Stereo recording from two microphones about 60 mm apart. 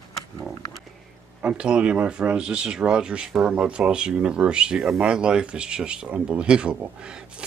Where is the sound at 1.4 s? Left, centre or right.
Centre.